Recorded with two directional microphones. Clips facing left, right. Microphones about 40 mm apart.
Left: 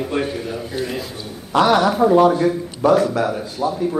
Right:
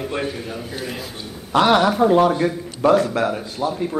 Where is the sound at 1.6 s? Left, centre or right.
Right.